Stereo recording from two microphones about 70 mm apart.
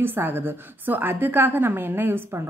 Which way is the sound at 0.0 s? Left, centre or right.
Right.